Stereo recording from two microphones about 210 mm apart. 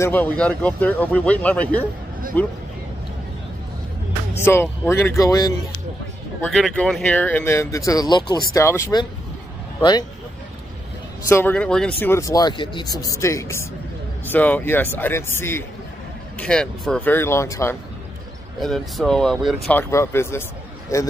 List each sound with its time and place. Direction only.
0.0 s speech: 10° left (ahead or behind)
4.4 s speech: 10° left (ahead or behind)
6.4 s speech: 5° left (ahead or behind); by 10.0 s 20° left (ahead or behind)
11.2 s speech: 10° left (ahead or behind)
18.6 s speech: centre (ahead or behind)